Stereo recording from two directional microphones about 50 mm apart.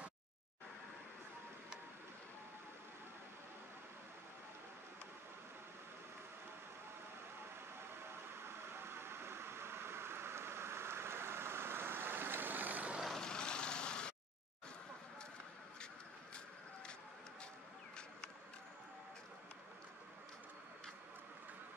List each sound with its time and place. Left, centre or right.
8.7 s vehicle: right
13.2 s vehicle: centre